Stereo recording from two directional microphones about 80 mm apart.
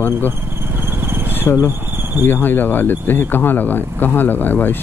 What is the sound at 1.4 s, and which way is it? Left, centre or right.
Speech, left.